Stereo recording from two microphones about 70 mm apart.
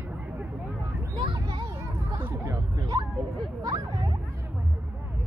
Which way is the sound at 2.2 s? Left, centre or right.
Right.